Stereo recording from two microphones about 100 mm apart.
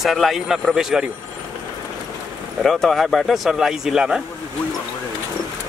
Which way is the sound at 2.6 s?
5° left (ahead or behind).